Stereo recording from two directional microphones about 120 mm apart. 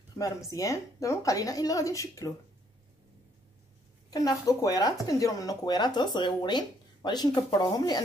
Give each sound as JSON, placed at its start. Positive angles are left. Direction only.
{"t": 0.2, "sound": "speech", "side_deg": 25}
{"t": 4.1, "sound": "speech", "side_deg": 30}